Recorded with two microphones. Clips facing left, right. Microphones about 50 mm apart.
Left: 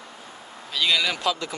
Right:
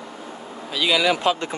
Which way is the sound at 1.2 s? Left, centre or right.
Right.